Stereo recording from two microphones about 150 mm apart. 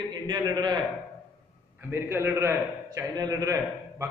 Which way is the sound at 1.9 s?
15° right (ahead or behind).